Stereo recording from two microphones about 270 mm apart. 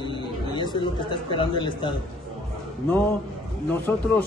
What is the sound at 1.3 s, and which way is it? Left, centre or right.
Speech, centre.